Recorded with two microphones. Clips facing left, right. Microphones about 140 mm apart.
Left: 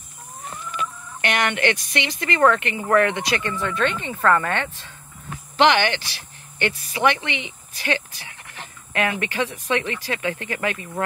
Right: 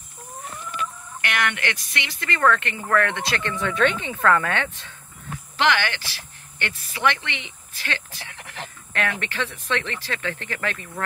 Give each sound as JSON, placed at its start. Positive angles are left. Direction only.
{"t": 0.7, "sound": "speech", "side_deg": 20}
{"t": 5.6, "sound": "speech", "side_deg": 20}